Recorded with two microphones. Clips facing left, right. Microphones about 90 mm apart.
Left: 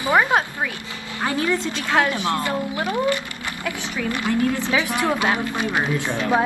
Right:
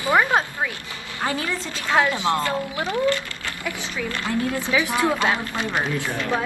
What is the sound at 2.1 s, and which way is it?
Speech, 20° right (ahead or behind).